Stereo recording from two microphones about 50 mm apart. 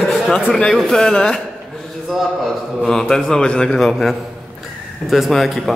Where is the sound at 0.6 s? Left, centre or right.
Centre.